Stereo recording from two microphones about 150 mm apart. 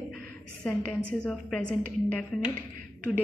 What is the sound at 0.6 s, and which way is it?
Speech, 10° left (ahead or behind).